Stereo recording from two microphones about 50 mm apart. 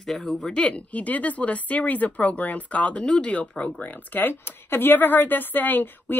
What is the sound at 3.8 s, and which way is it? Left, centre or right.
A woman's voice, left.